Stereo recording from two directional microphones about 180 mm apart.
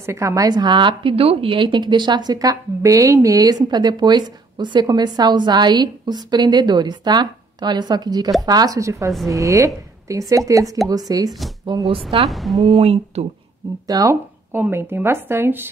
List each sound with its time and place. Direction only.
0.0 s a woman's voice: 15° right (ahead or behind)
12.3 s a woman's voice: centre (ahead or behind)
12.6 s speech: 30° right (ahead or behind)
13.8 s speech: 20° right (ahead or behind)